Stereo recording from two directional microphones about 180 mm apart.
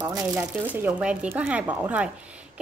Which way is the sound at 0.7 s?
10° right (ahead or behind).